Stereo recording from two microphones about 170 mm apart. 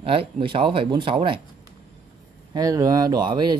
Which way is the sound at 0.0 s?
30° right (ahead or behind).